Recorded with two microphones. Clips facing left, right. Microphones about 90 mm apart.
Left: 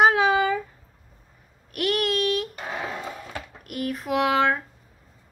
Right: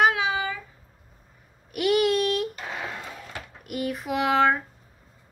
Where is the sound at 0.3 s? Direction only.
60° left (ahead or behind).